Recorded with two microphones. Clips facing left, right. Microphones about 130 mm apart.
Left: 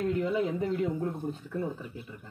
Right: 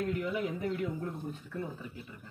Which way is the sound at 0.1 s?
30° left (ahead or behind).